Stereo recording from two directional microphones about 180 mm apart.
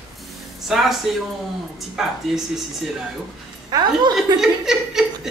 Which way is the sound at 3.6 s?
25° right (ahead or behind).